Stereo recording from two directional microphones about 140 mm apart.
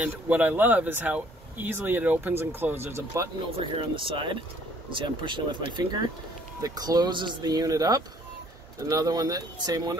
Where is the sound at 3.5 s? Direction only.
40° right (ahead or behind).